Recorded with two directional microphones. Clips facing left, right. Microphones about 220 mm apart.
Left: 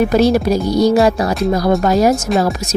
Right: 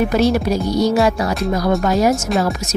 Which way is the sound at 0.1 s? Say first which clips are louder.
Left 3 dB; 35° left (ahead or behind).